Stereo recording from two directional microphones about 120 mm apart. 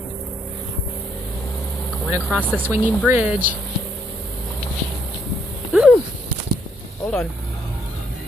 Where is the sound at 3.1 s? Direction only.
10° right (ahead or behind).